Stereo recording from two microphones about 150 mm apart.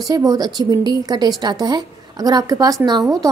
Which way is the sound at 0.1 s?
25° right (ahead or behind).